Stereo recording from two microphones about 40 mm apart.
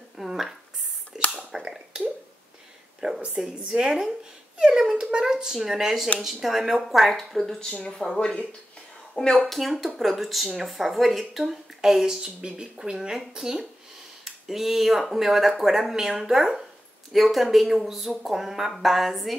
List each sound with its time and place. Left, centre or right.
0.2 s a sound: centre
3.0 s a sound: right
3.5 s a woman's voice: right
7.3 s speech: centre
8.2 s a woman's voice: left
9.4 s speech: centre
12.4 s speech: right; by 19.3 s centre